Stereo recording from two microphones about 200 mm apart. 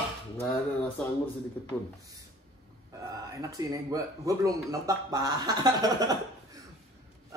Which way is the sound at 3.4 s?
15° right (ahead or behind).